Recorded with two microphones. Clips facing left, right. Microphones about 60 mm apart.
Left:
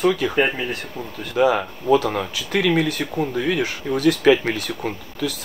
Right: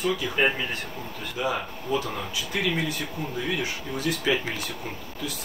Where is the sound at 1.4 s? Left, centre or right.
Left.